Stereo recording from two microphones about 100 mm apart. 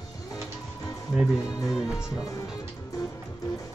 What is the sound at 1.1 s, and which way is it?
Speech, centre (ahead or behind).